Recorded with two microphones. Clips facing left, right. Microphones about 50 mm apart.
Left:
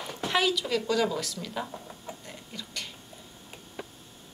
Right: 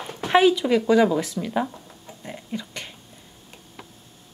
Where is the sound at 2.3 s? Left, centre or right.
Right.